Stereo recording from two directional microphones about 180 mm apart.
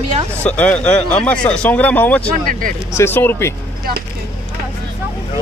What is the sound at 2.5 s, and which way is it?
Speech, 50° right (ahead or behind).